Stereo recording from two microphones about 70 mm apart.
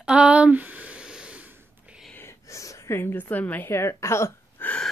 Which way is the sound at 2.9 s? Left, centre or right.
Left.